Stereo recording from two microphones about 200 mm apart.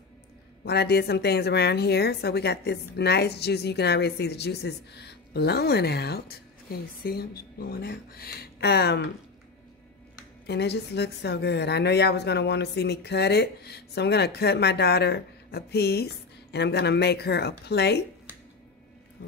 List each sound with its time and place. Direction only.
0.7 s a woman's voice: 55° left (ahead or behind)
10.4 s a woman's voice: 55° left (ahead or behind)